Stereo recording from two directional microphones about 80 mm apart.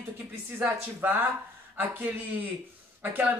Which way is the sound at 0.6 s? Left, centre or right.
Right.